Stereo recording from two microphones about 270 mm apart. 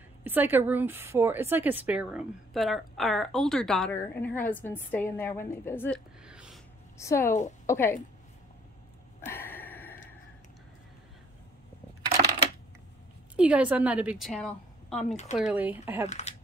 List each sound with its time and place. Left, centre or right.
0.2 s a woman's voice: centre
7.0 s a woman's voice: centre
9.2 s gasp: centre
13.4 s a woman's voice: centre
16.1 s speech: left